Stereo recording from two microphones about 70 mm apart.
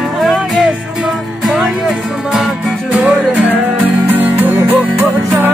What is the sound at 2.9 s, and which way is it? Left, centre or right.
Music, right.